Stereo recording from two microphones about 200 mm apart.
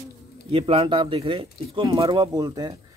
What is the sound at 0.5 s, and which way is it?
Speech, 30° right (ahead or behind).